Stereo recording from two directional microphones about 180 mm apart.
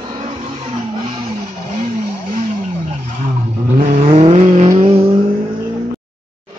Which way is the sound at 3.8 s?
40° right (ahead or behind).